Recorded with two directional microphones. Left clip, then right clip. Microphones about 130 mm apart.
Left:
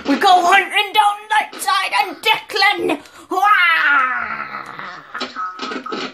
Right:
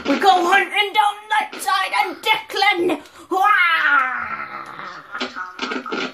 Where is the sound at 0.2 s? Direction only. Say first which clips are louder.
Left 3 dB; 40° left (ahead or behind).